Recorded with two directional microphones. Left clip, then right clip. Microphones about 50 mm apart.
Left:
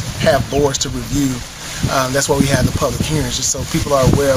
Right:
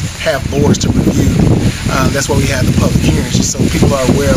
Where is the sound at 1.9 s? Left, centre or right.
Centre.